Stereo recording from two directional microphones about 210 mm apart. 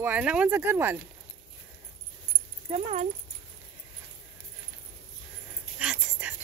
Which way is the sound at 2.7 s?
30° right (ahead or behind).